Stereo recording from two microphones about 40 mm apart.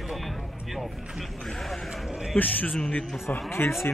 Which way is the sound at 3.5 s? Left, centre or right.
Left.